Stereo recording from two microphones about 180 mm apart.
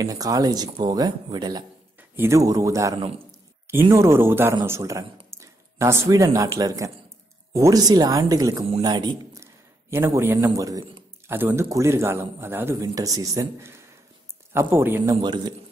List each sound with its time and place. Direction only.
0.0 s a man's voice: 20° right (ahead or behind)